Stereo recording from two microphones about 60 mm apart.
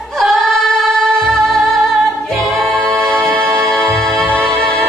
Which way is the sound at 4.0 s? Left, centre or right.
Centre.